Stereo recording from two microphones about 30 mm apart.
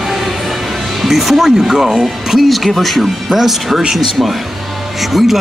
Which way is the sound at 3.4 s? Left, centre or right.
Centre.